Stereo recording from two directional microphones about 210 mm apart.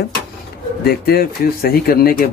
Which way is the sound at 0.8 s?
45° left (ahead or behind).